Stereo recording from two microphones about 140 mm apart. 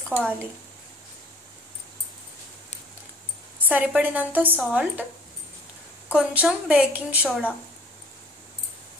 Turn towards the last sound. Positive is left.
turn(degrees=-10)  # may be behind; listen again after turning